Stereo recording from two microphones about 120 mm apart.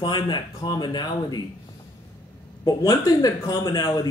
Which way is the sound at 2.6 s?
30° left (ahead or behind).